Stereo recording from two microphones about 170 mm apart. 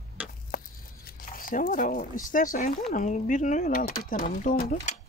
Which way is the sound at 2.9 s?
50° left (ahead or behind).